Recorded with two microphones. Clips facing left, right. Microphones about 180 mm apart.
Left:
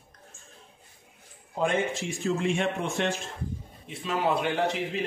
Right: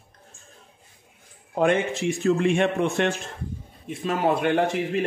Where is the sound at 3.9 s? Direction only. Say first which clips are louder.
Right 4 dB; 45° right (ahead or behind).